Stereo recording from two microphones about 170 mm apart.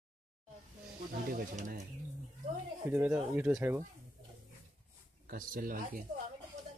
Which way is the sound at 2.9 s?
10° right (ahead or behind).